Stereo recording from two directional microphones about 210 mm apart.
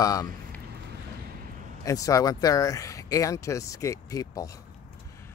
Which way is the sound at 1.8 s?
15° left (ahead or behind).